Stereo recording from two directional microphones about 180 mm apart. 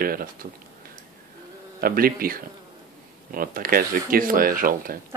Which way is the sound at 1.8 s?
55° right (ahead or behind).